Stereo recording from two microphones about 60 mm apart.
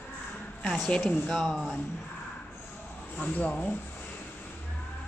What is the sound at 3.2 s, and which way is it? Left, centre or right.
Speech, left.